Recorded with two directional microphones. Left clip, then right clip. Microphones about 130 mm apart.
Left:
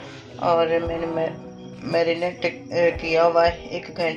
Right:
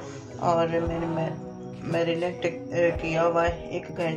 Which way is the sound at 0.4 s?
20° left (ahead or behind).